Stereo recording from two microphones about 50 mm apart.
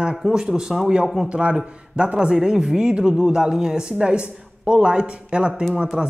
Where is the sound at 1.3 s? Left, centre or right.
Right.